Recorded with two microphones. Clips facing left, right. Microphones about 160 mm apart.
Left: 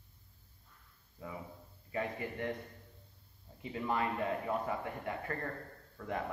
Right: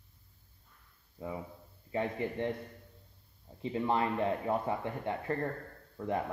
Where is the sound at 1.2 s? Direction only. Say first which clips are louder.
Right 5 dB; 25° right (ahead or behind).